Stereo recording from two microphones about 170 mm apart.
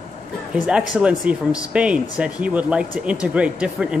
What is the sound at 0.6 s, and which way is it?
Speech, 5° right (ahead or behind).